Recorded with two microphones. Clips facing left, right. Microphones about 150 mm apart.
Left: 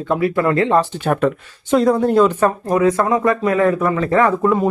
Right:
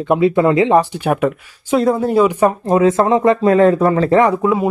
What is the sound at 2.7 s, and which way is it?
Speech, 25° right (ahead or behind).